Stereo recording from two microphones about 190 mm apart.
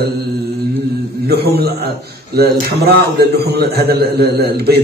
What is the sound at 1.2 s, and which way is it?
A man's voice, 55° right (ahead or behind).